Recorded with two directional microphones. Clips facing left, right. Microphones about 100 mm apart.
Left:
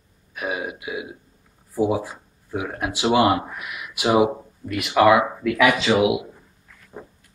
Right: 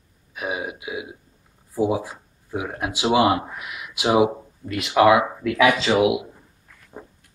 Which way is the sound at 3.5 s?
20° right (ahead or behind).